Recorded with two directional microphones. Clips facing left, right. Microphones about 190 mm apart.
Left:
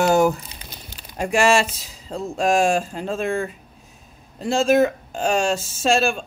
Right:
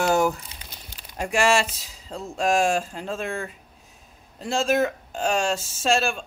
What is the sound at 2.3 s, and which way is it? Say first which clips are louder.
Speech: left 3 dB; 20° left (ahead or behind).